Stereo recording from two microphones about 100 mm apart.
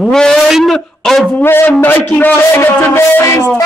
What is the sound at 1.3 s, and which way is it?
Speech, 20° left (ahead or behind).